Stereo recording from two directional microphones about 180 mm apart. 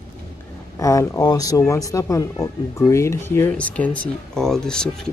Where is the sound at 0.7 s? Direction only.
15° left (ahead or behind).